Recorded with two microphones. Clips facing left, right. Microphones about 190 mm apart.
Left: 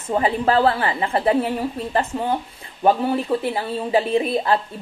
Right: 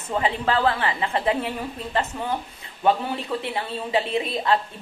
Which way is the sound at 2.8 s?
35° left (ahead or behind).